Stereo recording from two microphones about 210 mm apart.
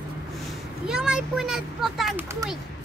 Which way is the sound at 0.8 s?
5° right (ahead or behind).